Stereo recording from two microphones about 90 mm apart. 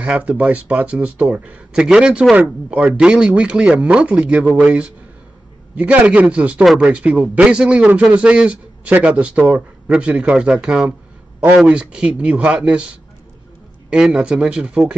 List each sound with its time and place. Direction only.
0.0 s speech: 15° right (ahead or behind)
6.6 s speech: centre (ahead or behind)
7.1 s speech: 10° right (ahead or behind)